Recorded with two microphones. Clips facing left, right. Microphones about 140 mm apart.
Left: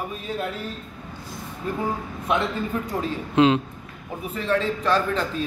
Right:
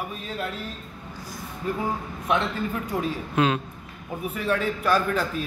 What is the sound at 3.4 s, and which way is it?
Speech, 25° left (ahead or behind).